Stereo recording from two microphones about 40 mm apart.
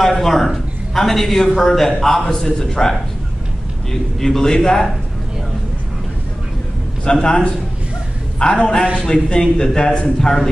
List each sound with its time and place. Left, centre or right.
0.0 s a sound: centre
0.9 s speech: centre
7.1 s a man's voice: left